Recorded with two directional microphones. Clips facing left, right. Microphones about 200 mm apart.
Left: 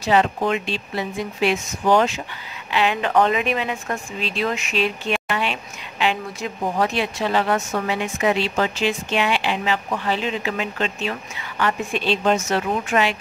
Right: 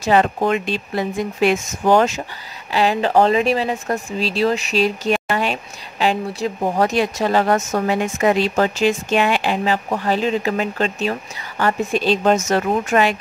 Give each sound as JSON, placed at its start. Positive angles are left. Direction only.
{"t": 0.0, "sound": "speech", "side_deg": -45}